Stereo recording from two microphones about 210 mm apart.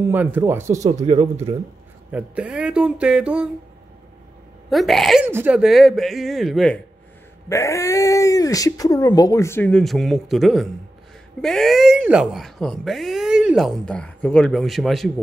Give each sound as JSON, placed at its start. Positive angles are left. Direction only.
{"t": 0.0, "sound": "speech", "side_deg": -10}
{"t": 0.8, "sound": "speech", "side_deg": -30}
{"t": 2.0, "sound": "speech", "side_deg": -5}
{"t": 4.6, "sound": "speech", "side_deg": 0}
{"t": 7.4, "sound": "speech", "side_deg": 15}